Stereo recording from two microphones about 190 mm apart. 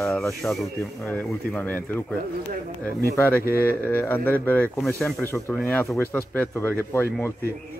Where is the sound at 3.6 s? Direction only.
10° left (ahead or behind).